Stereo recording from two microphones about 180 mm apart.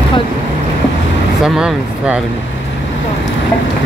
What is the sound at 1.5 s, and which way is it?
Speech, 5° right (ahead or behind).